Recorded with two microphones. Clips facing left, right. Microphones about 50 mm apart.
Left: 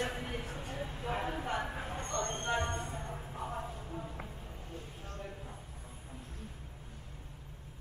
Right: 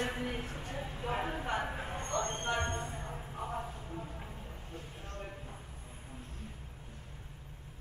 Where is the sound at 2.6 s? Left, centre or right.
Right.